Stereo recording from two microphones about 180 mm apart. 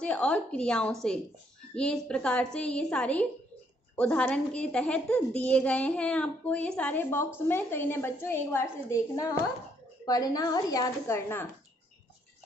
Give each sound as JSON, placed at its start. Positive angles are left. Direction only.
{"t": 0.0, "sound": "a woman's voice", "side_deg": 5}